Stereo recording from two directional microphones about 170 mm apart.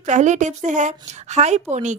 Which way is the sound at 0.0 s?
45° right (ahead or behind).